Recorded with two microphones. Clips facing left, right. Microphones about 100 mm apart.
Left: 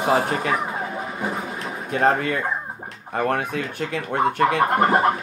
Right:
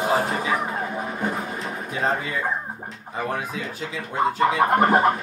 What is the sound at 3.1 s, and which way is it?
Speech, 60° left (ahead or behind).